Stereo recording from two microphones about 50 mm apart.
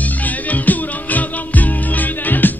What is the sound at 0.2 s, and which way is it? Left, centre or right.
Music, left.